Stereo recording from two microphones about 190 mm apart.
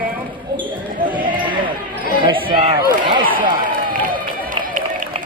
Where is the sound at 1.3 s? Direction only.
25° right (ahead or behind).